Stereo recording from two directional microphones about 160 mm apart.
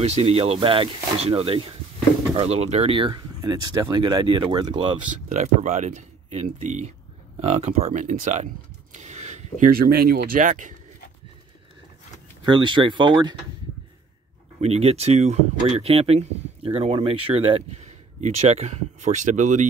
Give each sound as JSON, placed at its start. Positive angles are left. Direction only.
{"t": 0.0, "sound": "speech", "side_deg": -40}
{"t": 5.3, "sound": "speech", "side_deg": -50}
{"t": 8.9, "sound": "a sound", "side_deg": -45}
{"t": 9.7, "sound": "speech", "side_deg": -70}
{"t": 12.4, "sound": "speech", "side_deg": -30}
{"t": 14.6, "sound": "speech", "side_deg": -40}